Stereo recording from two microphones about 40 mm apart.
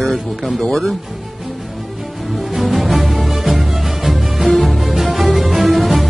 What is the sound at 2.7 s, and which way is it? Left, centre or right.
Music, centre.